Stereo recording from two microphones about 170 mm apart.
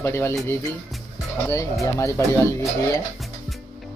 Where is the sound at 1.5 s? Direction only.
20° left (ahead or behind).